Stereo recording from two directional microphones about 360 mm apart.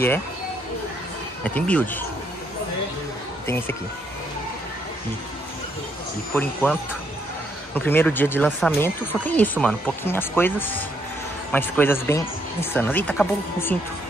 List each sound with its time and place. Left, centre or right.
1.4 s speech: centre
3.4 s speech: centre
6.3 s speech: centre